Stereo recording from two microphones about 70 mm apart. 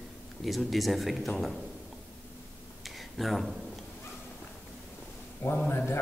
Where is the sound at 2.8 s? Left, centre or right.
Centre.